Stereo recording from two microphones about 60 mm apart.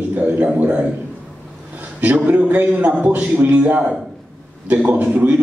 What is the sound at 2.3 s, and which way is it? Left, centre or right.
A man's voice, right.